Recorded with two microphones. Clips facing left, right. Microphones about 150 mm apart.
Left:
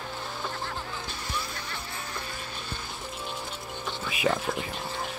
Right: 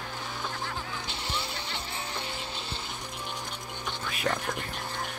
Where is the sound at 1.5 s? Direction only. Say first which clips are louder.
Right 1 dB; 25° right (ahead or behind).